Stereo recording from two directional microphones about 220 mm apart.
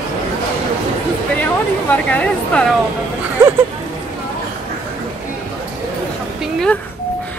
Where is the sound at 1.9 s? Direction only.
5° left (ahead or behind).